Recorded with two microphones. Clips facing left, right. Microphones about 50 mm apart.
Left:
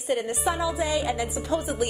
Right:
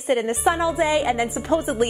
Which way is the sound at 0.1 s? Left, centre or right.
Right.